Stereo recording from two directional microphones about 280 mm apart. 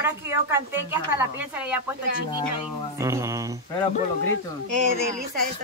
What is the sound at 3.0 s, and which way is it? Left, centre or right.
Speech, centre.